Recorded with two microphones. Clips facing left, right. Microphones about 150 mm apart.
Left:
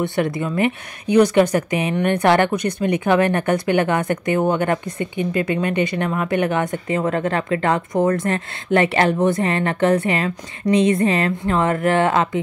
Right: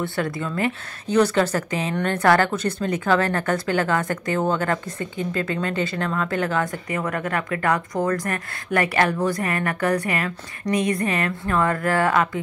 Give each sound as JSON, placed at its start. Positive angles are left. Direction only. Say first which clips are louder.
{"t": 0.0, "sound": "a woman's voice", "louder": "left 5 dB", "side_deg": 20}